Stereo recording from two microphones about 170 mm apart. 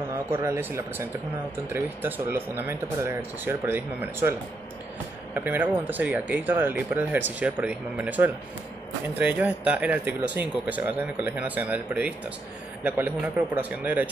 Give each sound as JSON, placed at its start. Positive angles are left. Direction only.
{"t": 0.4, "sound": "speech", "side_deg": -15}